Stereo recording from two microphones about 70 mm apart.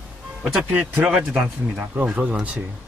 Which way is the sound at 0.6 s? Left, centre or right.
Centre.